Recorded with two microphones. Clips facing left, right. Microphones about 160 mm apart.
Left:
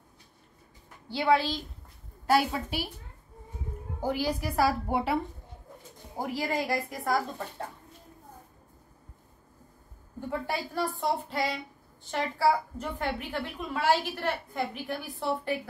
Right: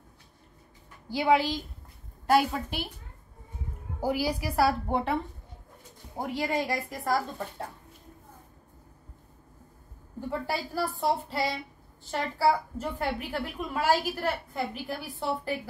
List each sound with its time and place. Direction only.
1.1 s a woman's voice: 15° right (ahead or behind)
2.2 s a woman's voice: centre (ahead or behind)
4.0 s a woman's voice: 10° right (ahead or behind)
10.4 s a woman's voice: 5° right (ahead or behind)